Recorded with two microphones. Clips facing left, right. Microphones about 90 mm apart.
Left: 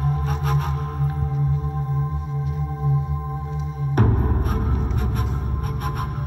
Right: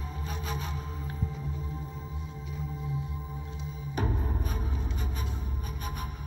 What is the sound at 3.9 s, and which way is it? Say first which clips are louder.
Music: left 11 dB; 60° left (ahead or behind).